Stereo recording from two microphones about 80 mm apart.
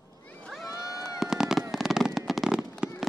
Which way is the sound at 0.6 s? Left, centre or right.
Left.